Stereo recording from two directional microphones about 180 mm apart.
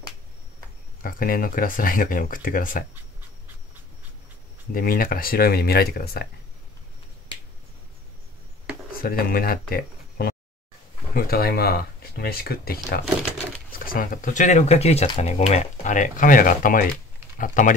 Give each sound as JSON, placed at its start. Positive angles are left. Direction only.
{"t": 1.0, "sound": "speech", "side_deg": 50}
{"t": 4.7, "sound": "speech", "side_deg": 50}
{"t": 8.9, "sound": "speech", "side_deg": 55}